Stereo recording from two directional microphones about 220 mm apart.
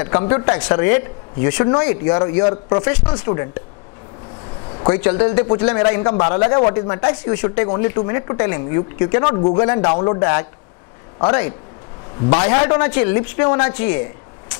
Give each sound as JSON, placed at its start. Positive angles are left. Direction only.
{"t": 0.0, "sound": "speech", "side_deg": 20}
{"t": 4.6, "sound": "a sound", "side_deg": 25}
{"t": 4.9, "sound": "a woman's voice", "side_deg": 20}